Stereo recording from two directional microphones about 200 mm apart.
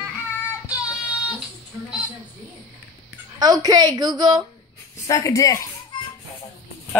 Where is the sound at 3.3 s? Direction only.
20° right (ahead or behind).